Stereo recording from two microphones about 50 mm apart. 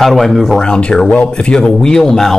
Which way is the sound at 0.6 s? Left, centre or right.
Centre.